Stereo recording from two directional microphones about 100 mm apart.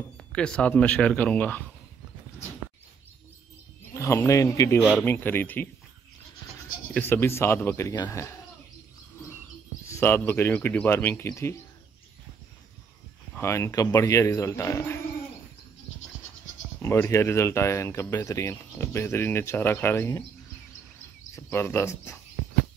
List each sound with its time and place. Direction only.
0.2 s speech: 10° left (ahead or behind)
3.9 s speech: 30° left (ahead or behind)
5.0 s speech: 20° left (ahead or behind)
6.9 s speech: 20° left (ahead or behind)
9.8 s speech: 25° left (ahead or behind)
13.4 s speech: 30° left (ahead or behind)
16.8 s speech: 25° left (ahead or behind)
21.5 s speech: 25° left (ahead or behind)